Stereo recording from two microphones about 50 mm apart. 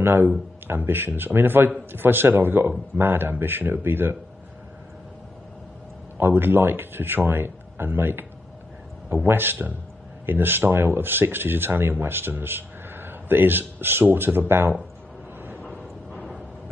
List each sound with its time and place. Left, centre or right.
0.0 s speech: right
6.1 s speech: right
15.6 s a sound: left